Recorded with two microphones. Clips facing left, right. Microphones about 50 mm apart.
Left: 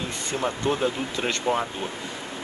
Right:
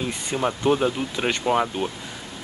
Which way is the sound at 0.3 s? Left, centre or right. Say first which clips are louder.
Right 4 dB; centre.